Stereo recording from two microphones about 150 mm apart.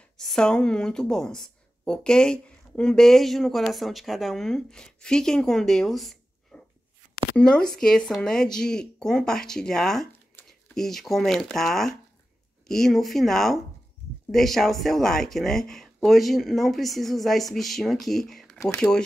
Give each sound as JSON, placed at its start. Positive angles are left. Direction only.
{"t": 0.2, "sound": "speech", "side_deg": 5}